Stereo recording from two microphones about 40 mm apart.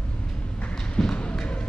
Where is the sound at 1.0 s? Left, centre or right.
Centre.